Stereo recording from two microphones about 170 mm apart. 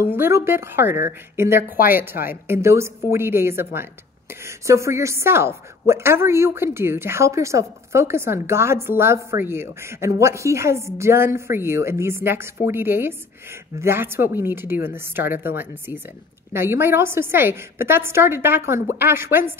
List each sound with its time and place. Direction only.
0.0 s a woman's voice: 15° right (ahead or behind)